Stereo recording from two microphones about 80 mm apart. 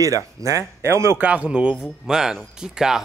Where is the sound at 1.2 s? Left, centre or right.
Centre.